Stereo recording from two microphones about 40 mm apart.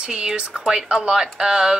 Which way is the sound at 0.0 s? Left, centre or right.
Right.